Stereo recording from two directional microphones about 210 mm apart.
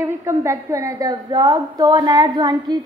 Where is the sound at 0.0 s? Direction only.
15° right (ahead or behind).